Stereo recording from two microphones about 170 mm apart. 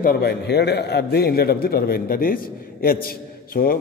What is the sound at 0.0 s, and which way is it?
A man's voice, 65° left (ahead or behind).